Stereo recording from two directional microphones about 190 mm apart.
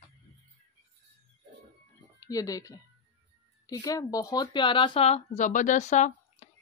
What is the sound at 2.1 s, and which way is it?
Speech, 20° left (ahead or behind).